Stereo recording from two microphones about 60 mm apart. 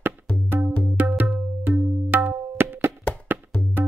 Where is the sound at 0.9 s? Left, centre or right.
Right.